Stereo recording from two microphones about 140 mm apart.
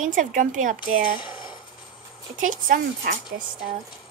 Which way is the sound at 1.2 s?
35° left (ahead or behind).